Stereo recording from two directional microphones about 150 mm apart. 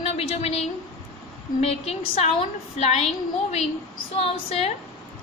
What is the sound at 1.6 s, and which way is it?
A woman's voice, 40° left (ahead or behind).